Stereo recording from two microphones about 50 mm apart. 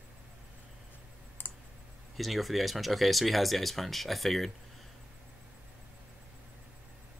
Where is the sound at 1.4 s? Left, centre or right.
Left.